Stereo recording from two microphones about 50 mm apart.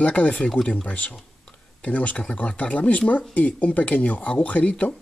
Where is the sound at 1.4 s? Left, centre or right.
Left.